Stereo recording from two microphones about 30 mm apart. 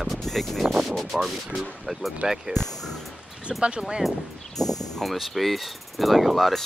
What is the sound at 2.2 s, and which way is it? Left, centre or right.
Speech, centre.